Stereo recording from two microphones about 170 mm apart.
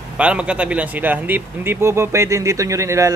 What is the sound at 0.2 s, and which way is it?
Speech, 5° right (ahead or behind).